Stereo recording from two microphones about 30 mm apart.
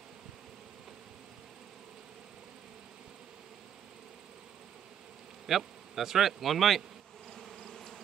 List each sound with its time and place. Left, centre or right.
5.5 s a man's voice: centre
7.3 s bee: centre